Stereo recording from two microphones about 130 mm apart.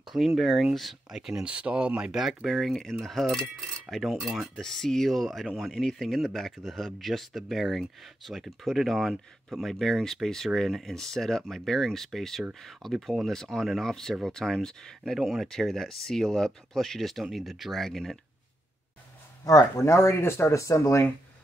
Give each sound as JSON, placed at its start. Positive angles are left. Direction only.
{"t": 0.1, "sound": "speech", "side_deg": 0}
{"t": 19.4, "sound": "speech", "side_deg": 25}